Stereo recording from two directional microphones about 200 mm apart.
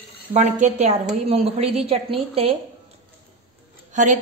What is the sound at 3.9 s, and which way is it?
Speech, 40° right (ahead or behind).